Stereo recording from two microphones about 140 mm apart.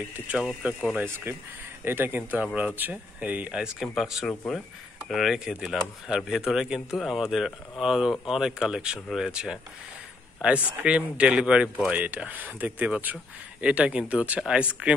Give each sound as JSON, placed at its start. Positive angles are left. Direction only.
{"t": 0.1, "sound": "speech", "side_deg": -5}